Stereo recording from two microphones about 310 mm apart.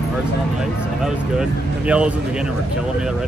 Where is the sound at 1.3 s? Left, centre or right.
Centre.